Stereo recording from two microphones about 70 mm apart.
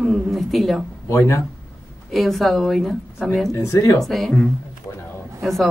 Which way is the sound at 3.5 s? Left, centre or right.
Left.